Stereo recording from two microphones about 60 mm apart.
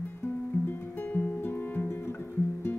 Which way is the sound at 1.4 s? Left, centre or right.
Left.